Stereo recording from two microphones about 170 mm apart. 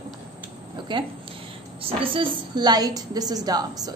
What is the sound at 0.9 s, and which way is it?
A woman's voice, 25° right (ahead or behind).